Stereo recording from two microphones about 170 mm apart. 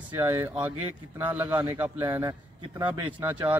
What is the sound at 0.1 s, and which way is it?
Speech, 15° right (ahead or behind).